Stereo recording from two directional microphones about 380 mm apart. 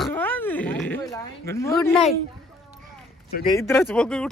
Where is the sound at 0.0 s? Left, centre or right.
Centre.